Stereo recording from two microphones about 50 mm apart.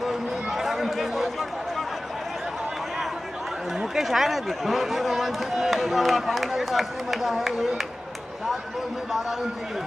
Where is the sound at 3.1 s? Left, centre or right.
Centre.